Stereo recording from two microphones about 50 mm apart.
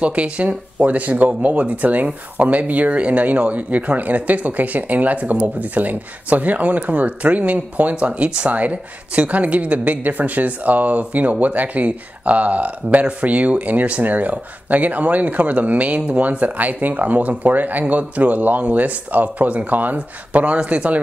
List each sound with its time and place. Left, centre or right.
0.0 s speech: right